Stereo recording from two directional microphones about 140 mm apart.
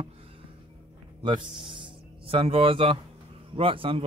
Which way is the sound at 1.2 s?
35° right (ahead or behind).